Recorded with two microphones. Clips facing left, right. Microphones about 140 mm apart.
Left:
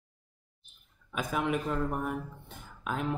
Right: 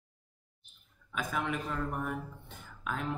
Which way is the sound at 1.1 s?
15° left (ahead or behind).